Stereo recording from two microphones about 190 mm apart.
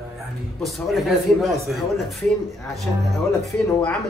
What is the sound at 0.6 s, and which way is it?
Music, centre (ahead or behind).